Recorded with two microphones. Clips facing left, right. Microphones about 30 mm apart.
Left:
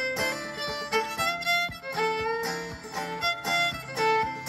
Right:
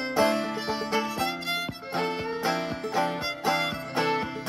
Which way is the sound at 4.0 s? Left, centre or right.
Right.